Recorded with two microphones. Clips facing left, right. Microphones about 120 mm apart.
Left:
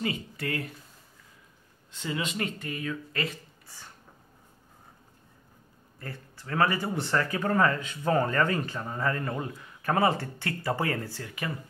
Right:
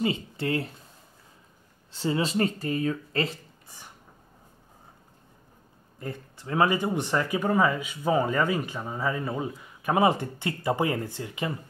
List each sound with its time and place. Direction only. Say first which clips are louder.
0.0 s speech: right 4 dB; 25° right (ahead or behind)
1.9 s speech: right 6 dB; 35° right (ahead or behind)
3.6 s a sound: right 1 dB; 20° right (ahead or behind)
5.9 s speech: right 5 dB; 20° right (ahead or behind)